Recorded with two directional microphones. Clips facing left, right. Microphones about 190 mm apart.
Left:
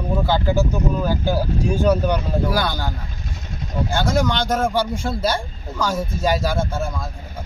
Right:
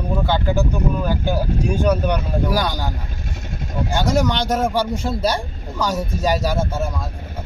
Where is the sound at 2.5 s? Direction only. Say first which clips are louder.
Right 1 dB; 10° right (ahead or behind).